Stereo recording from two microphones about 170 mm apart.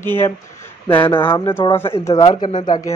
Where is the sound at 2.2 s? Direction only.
35° left (ahead or behind).